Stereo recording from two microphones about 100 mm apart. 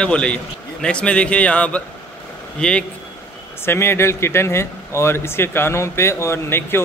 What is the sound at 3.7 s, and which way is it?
Speech, 25° left (ahead or behind).